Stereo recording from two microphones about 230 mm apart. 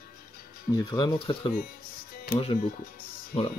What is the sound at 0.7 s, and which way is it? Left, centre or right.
Speech, centre.